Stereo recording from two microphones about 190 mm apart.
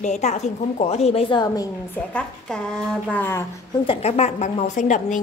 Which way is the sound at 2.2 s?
5° left (ahead or behind).